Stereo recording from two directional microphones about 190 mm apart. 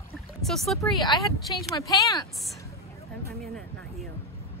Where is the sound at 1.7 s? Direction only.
20° left (ahead or behind).